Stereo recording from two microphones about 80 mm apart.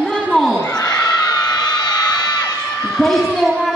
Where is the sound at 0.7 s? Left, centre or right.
Left.